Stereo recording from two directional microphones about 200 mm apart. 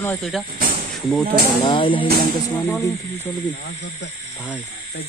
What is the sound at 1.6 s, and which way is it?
Speech, 25° left (ahead or behind).